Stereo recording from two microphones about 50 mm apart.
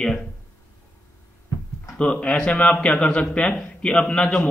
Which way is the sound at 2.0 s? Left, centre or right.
Left.